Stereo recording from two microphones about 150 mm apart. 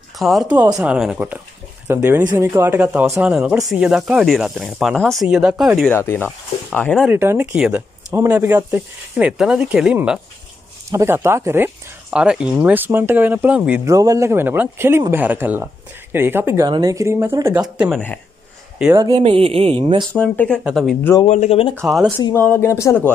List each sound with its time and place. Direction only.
0.2 s speech: centre (ahead or behind)
5.9 s speech: 15° left (ahead or behind)
7.1 s speech: 15° right (ahead or behind)
10.9 s speech: 20° right (ahead or behind)
13.8 s speech: 20° right (ahead or behind)
16.6 s speech: 25° right (ahead or behind); by 18.0 s 5° right (ahead or behind)
18.9 s speech: 20° right (ahead or behind)
19.2 s a woman's voice: 40° right (ahead or behind)
19.8 s speech: 30° right (ahead or behind)
20.1 s speech: 10° left (ahead or behind)
21.3 s speech: 45° left (ahead or behind)
21.8 s speech: centre (ahead or behind)
22.3 s speech: 15° left (ahead or behind)